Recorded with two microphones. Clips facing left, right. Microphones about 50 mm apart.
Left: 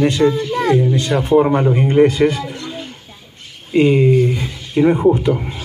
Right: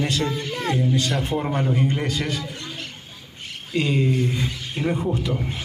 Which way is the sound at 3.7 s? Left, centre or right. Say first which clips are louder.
Left 10 dB; left.